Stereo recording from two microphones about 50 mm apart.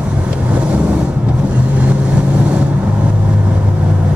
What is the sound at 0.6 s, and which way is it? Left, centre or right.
Vehicle, right.